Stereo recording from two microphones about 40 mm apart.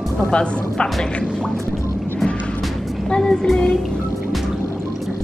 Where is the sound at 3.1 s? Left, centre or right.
Centre.